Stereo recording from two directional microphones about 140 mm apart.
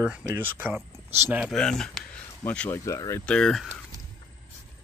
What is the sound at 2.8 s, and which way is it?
Speech, 20° left (ahead or behind).